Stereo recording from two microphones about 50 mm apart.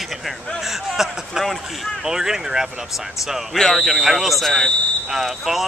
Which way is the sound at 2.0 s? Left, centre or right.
Centre.